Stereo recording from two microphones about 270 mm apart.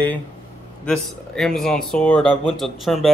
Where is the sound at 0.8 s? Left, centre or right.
Centre.